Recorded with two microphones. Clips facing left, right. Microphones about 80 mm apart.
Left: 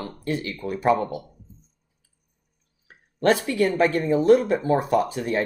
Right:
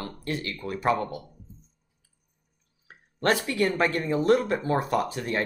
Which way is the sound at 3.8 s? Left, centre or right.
Centre.